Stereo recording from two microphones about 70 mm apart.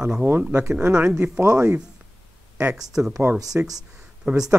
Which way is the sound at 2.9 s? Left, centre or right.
Centre.